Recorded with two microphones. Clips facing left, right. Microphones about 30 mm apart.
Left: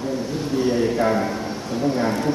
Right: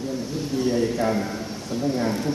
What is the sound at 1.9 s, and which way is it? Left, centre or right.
Speech, left.